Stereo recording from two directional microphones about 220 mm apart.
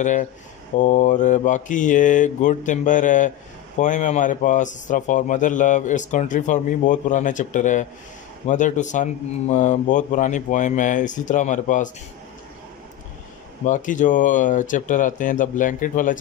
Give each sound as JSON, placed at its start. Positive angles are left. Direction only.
{"t": 0.0, "sound": "speech", "side_deg": 35}
{"t": 13.7, "sound": "speech", "side_deg": 35}